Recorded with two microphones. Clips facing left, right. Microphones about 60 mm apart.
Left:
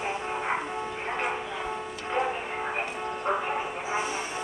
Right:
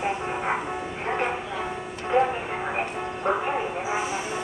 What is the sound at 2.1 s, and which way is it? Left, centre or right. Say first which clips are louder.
Music: right 7 dB; centre.